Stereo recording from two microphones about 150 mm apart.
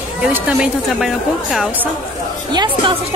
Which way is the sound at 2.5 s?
30° right (ahead or behind).